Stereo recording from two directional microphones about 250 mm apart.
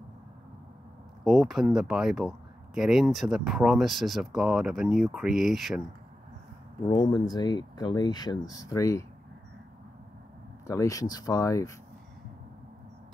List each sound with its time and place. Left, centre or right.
1.2 s speech: centre
6.9 s speech: centre
10.7 s speech: centre